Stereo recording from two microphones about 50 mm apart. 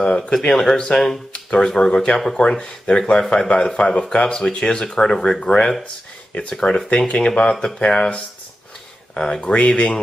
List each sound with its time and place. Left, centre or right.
0.0 s speech: centre